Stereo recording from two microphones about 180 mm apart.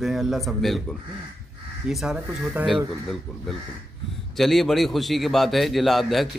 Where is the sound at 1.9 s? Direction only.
Centre (ahead or behind).